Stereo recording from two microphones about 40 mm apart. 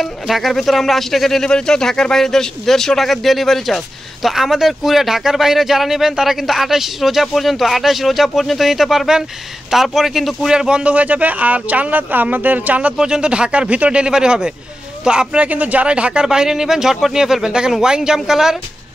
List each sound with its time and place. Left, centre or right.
0.0 s speech: centre
4.3 s speech: centre
10.5 s speech: centre
10.8 s speech: right
12.9 s speech: centre
14.0 s speech: centre
15.4 s speech: right; by 18.6 s centre